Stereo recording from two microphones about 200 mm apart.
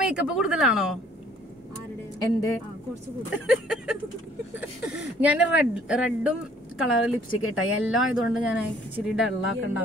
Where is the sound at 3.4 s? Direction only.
5° right (ahead or behind).